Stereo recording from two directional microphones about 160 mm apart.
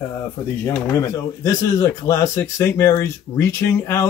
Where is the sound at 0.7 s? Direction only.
10° left (ahead or behind).